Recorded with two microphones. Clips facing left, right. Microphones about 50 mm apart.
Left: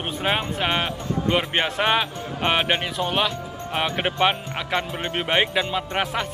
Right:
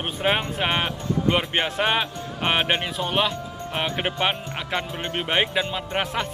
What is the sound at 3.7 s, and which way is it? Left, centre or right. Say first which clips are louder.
Speech: left 2 dB; centre.